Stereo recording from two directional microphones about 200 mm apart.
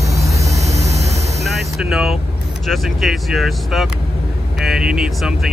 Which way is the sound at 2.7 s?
Centre (ahead or behind).